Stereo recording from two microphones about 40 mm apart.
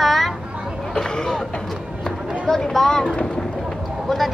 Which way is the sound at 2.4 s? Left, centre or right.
Centre.